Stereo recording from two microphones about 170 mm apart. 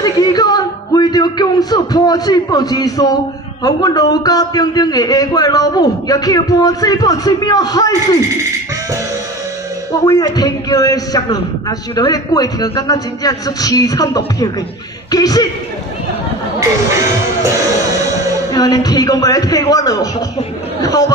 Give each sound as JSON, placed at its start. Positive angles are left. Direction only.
{"t": 0.0, "sound": "a sound", "side_deg": 20}
{"t": 3.6, "sound": "a man's voice", "side_deg": 20}
{"t": 10.0, "sound": "a man's voice", "side_deg": 20}
{"t": 18.5, "sound": "a man's voice", "side_deg": 20}